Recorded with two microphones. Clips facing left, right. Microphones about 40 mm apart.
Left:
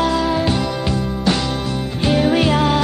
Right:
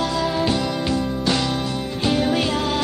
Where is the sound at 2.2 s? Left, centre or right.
Left.